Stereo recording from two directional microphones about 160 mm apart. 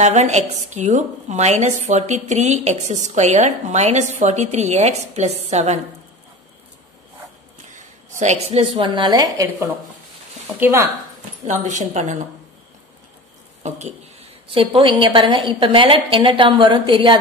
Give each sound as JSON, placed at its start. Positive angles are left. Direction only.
{"t": 0.0, "sound": "a woman's voice", "side_deg": -45}
{"t": 8.2, "sound": "a woman's voice", "side_deg": -45}
{"t": 11.4, "sound": "a woman's voice", "side_deg": -50}
{"t": 13.6, "sound": "speech", "side_deg": -45}
{"t": 14.5, "sound": "a woman's voice", "side_deg": -35}